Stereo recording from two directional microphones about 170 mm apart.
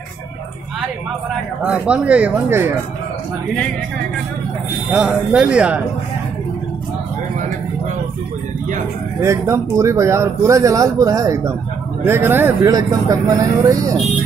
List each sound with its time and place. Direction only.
1.6 s speech: 5° right (ahead or behind)
4.9 s speech: 5° right (ahead or behind)
9.2 s speech: 15° right (ahead or behind)